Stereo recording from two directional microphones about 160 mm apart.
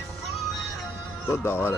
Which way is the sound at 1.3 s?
15° left (ahead or behind).